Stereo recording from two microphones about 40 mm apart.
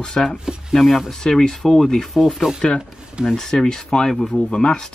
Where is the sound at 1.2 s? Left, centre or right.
Centre.